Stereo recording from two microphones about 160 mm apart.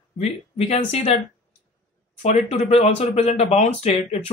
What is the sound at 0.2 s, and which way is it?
Speech, 40° left (ahead or behind).